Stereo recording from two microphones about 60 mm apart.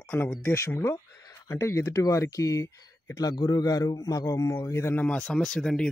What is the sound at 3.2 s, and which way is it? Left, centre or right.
A man's voice, left.